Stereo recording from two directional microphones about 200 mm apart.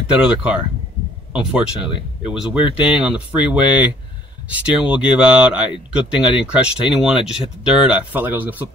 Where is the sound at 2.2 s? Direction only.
5° right (ahead or behind).